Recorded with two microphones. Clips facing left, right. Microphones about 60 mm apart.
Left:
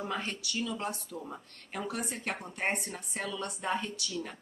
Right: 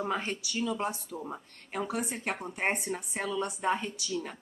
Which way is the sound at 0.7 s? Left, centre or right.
Centre.